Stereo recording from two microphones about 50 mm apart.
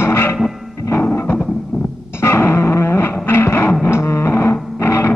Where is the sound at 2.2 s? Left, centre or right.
Left.